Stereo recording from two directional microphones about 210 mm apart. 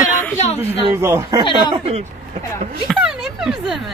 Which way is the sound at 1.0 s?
15° right (ahead or behind).